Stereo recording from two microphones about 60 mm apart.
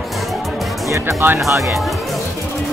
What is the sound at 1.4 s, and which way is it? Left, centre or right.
Speech, right.